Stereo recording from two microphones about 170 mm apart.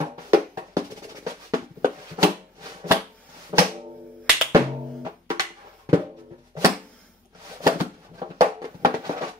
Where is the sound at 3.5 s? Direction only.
30° right (ahead or behind).